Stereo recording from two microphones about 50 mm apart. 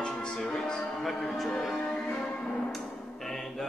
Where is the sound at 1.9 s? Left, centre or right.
Centre.